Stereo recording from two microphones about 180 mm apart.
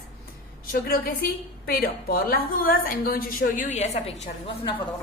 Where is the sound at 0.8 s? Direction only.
55° left (ahead or behind); by 4.0 s 40° left (ahead or behind).